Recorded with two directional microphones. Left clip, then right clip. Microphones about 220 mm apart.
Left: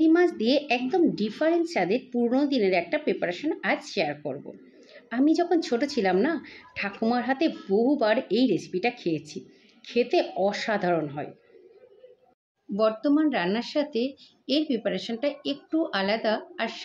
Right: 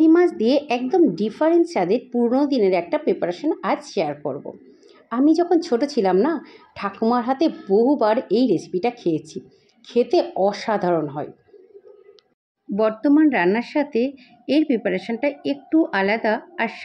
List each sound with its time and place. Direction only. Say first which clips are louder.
0.0 s a sound: right 6 dB; 20° right (ahead or behind)
0.4 s speech: right 5 dB; 20° right (ahead or behind)
5.1 s a woman's voice: right 5 dB; 15° right (ahead or behind)
12.7 s speech: right 5 dB; 20° right (ahead or behind)